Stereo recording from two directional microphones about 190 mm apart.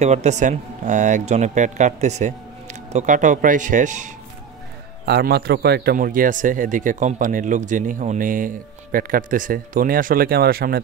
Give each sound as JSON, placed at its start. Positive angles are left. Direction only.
{"t": 0.0, "sound": "speech", "side_deg": -35}
{"t": 5.0, "sound": "speech", "side_deg": -60}